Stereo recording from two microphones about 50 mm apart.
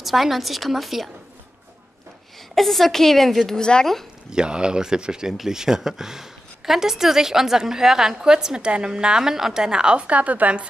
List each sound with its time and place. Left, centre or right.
0.0 s a woman's voice: centre
2.5 s a woman's voice: centre
4.3 s speech: centre